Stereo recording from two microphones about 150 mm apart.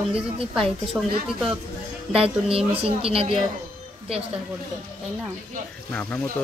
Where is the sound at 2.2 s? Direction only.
40° right (ahead or behind).